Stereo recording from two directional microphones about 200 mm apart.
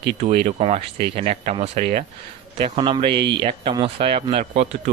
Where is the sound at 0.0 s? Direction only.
30° right (ahead or behind).